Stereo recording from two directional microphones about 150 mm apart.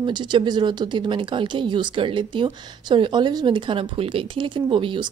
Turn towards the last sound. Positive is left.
turn(degrees=-35)  # may be behind; listen again after turning